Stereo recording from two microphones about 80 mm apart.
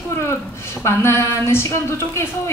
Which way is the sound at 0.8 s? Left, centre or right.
Left.